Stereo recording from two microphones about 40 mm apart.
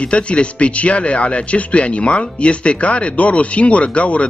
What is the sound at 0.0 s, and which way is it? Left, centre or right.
Speech, left.